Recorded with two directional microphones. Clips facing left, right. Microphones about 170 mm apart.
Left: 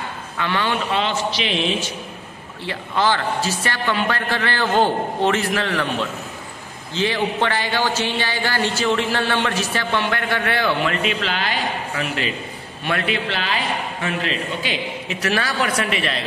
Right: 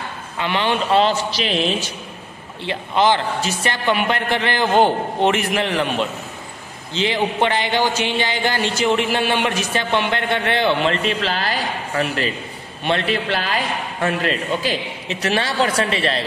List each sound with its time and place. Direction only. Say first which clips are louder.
0.4 s a man's voice: right 2 dB; 20° right (ahead or behind)
0.9 s a man's voice: right 5 dB; 35° right (ahead or behind)
2.6 s a man's voice: right 3 dB; 20° right (ahead or behind)
11.1 s speech: right 2 dB; 40° right (ahead or behind)
12.8 s a man's voice: right 3 dB; 25° right (ahead or behind)
13.1 s a man's voice: right 2 dB; 45° right (ahead or behind)
15.0 s a man's voice: right 2 dB; 25° right (ahead or behind)